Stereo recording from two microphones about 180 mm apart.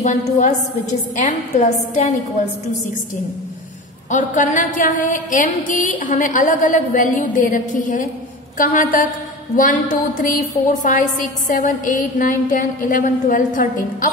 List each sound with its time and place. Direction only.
0.0 s a woman's voice: 40° left (ahead or behind)
4.1 s a woman's voice: 45° left (ahead or behind)